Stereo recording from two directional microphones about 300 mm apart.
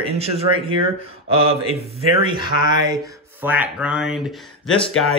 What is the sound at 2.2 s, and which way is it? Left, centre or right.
Speech, centre.